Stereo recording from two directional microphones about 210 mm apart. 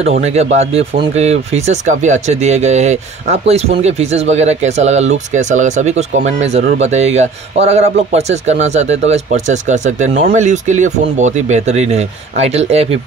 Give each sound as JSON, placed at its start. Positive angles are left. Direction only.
{"t": 0.0, "sound": "speech", "side_deg": -30}